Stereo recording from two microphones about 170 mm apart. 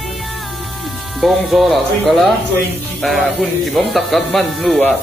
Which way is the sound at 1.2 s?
Centre (ahead or behind).